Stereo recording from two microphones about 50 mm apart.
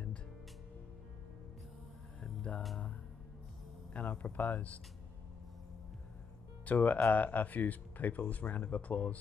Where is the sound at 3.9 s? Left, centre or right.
Left.